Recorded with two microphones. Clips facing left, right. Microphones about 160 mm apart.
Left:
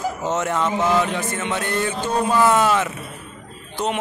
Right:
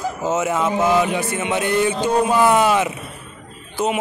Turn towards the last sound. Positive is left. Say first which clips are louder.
# right 3 dB
turn(degrees=-5)  # may be behind; listen again after turning